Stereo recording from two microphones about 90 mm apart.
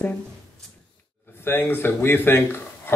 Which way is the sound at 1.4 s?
25° left (ahead or behind).